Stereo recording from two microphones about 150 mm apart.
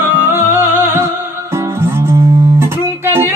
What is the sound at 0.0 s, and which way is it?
Music, 15° right (ahead or behind).